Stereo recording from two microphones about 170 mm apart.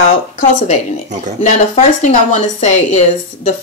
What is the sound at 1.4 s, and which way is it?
Speech, 45° left (ahead or behind).